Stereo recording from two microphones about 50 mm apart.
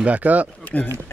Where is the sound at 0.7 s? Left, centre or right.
Left.